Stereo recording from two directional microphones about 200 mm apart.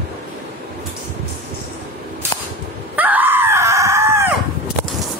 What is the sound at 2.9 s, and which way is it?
Screaming, 10° right (ahead or behind).